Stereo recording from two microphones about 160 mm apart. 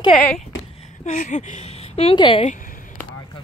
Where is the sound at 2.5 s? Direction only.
55° left (ahead or behind).